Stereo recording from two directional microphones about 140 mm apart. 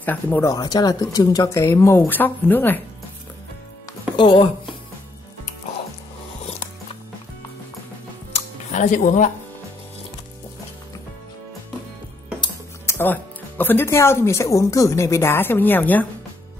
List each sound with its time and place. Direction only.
0.0 s speech: 15° left (ahead or behind)
0.5 s speech: 25° left (ahead or behind)
4.2 s speech: 35° left (ahead or behind)
8.3 s music: 60° left (ahead or behind)
12.8 s speech: 15° left (ahead or behind)